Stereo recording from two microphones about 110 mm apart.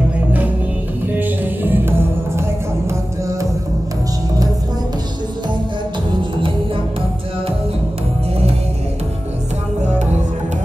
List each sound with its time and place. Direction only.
1.1 s music: 15° right (ahead or behind)